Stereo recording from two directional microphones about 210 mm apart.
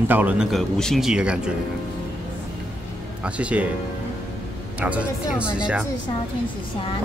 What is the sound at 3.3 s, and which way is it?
Speech, 5° right (ahead or behind).